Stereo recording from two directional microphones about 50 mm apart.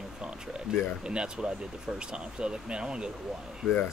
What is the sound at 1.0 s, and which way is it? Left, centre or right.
Speech, centre.